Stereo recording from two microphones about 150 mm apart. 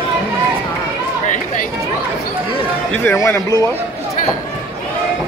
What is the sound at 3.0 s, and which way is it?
Speech, 20° left (ahead or behind).